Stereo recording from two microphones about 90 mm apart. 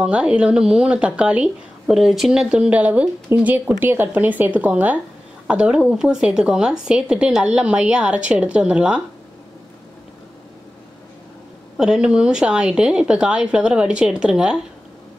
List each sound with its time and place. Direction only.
0.0 s speech: 10° right (ahead or behind)
11.7 s speech: 5° right (ahead or behind)